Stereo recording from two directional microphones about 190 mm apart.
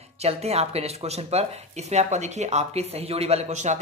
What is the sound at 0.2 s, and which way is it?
Speech, 35° right (ahead or behind).